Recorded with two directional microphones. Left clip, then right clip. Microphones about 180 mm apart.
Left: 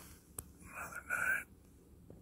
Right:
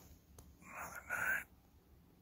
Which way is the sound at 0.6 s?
15° right (ahead or behind).